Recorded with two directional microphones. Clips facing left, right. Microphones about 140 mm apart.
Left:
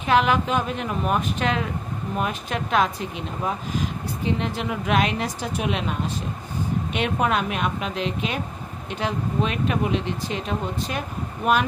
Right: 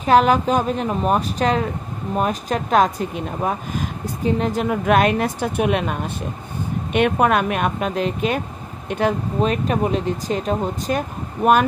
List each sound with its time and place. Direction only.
0.0 s a woman's voice: 40° right (ahead or behind)